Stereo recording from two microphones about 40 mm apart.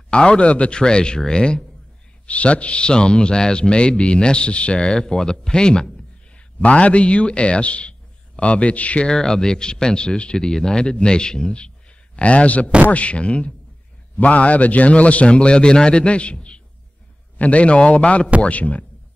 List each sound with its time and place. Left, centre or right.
0.1 s speech: left
2.2 s speech: left
4.8 s speech: centre
6.6 s a man's voice: left
9.0 s speech: centre
12.2 s a man's voice: left